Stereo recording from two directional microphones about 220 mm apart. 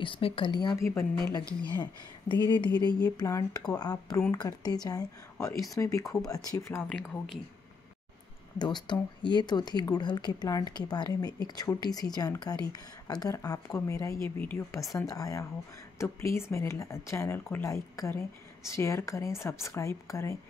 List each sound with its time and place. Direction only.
0.0 s a woman's voice: 25° left (ahead or behind); by 7.3 s 5° left (ahead or behind)
8.5 s a woman's voice: 20° left (ahead or behind)